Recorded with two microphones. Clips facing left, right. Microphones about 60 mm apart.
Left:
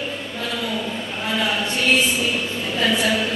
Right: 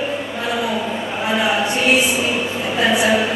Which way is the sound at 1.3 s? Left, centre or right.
Centre.